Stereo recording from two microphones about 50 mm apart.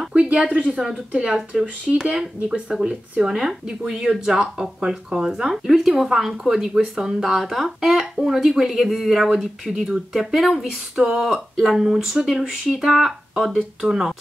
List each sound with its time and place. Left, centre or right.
0.1 s speech: right
0.7 s speech: centre